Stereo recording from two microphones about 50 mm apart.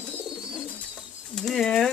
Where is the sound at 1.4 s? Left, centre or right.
Centre.